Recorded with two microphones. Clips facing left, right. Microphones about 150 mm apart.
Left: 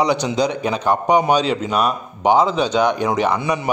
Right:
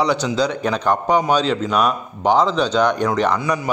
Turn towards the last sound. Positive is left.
turn(degrees=25)  # may be behind; listen again after turning